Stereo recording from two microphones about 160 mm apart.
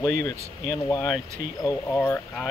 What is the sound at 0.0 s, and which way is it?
Speech, 20° left (ahead or behind).